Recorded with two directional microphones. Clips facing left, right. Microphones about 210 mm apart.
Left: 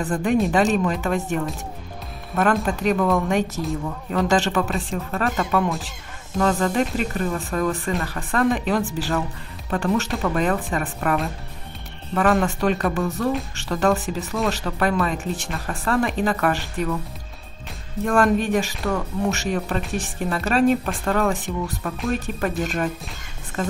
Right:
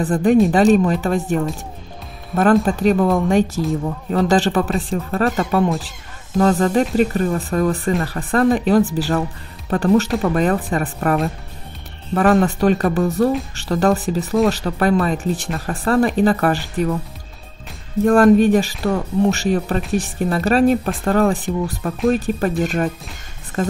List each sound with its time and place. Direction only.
0.1 s speech: 35° right (ahead or behind)
2.6 s speech: 35° right (ahead or behind)
18.0 s speech: 40° right (ahead or behind)